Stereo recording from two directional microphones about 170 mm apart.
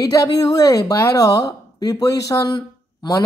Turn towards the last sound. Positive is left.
turn(degrees=20)  # may be behind; listen again after turning